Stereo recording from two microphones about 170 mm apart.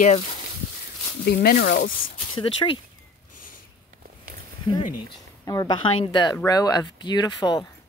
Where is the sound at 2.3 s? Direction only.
30° left (ahead or behind).